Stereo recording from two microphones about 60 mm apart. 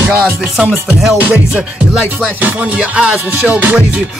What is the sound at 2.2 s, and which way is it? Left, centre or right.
Music, right.